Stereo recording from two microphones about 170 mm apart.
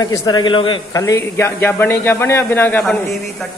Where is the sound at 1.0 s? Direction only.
15° left (ahead or behind).